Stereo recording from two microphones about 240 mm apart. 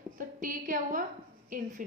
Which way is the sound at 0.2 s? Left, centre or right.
Right.